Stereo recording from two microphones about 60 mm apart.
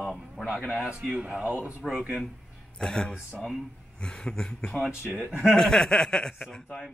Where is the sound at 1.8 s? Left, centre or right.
Centre.